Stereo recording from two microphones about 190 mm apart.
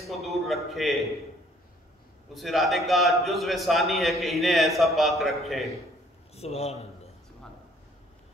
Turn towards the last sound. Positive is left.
turn(degrees=35)  # may be behind; listen again after turning